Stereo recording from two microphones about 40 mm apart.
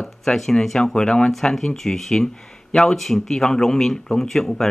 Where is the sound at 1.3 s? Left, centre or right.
Centre.